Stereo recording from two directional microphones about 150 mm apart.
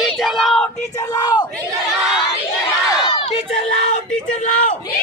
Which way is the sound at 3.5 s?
45° left (ahead or behind).